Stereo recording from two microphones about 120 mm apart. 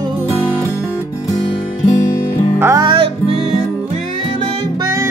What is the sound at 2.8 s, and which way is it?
Music, 45° right (ahead or behind).